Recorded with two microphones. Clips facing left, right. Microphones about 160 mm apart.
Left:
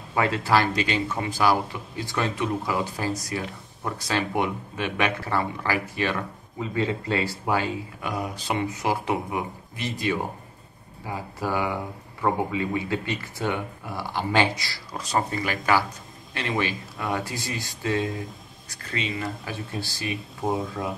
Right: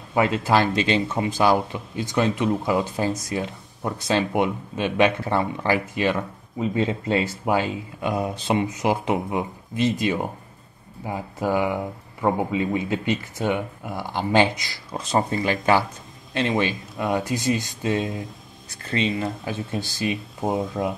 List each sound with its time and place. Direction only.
0.1 s speech: 20° right (ahead or behind)